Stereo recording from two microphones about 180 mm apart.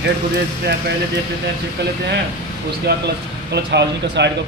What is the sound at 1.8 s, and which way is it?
Speech, 65° right (ahead or behind).